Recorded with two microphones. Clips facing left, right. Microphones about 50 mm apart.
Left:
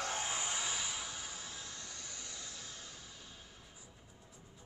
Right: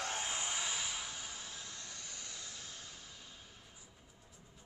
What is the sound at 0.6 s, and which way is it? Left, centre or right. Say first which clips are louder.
Music: even; centre.